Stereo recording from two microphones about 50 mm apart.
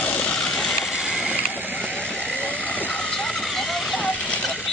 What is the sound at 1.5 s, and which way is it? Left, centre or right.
Vehicle, right.